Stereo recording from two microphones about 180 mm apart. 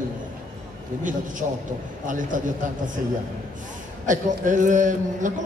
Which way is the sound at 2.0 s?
45° right (ahead or behind).